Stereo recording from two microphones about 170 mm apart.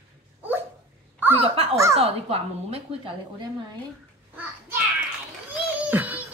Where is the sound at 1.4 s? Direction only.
35° right (ahead or behind).